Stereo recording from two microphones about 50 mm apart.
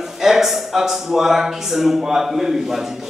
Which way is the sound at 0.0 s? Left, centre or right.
Centre.